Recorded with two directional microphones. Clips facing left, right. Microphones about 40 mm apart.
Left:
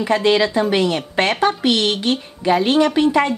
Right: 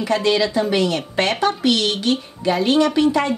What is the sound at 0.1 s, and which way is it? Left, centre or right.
A woman's voice, left.